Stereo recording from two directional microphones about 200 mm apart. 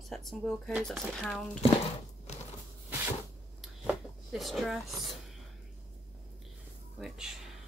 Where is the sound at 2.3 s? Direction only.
35° left (ahead or behind).